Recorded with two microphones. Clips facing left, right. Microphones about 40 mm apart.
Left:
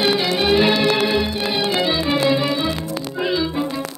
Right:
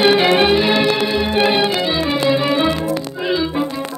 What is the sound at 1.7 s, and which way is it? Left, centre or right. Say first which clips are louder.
Music: right 1 dB; centre.